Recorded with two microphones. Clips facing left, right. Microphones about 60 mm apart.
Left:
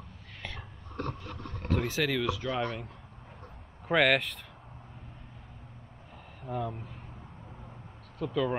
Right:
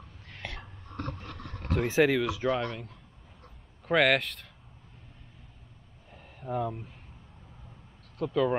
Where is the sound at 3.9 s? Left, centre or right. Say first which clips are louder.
Right 1 dB; centre.